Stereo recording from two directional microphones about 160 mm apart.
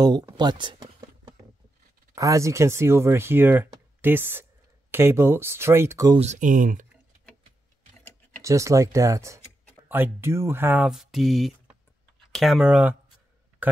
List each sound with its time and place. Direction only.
0.0 s speech: 25° right (ahead or behind)
2.1 s speech: 20° right (ahead or behind)
6.1 s speech: 45° right (ahead or behind)
8.4 s speech: 20° right (ahead or behind)